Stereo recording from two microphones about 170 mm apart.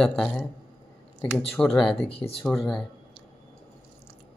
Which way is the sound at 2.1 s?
35° left (ahead or behind).